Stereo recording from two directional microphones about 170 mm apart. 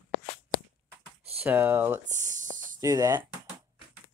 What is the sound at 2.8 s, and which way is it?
Speech, 20° right (ahead or behind).